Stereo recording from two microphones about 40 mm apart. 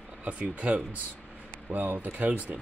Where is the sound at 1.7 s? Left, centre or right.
Right.